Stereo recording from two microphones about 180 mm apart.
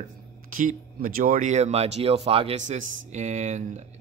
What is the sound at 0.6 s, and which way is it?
Speech, 50° right (ahead or behind).